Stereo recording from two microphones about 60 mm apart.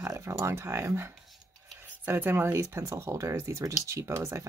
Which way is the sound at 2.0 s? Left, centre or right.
Right.